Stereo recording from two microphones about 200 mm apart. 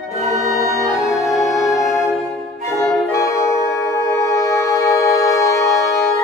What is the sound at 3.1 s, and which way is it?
Music, 20° left (ahead or behind).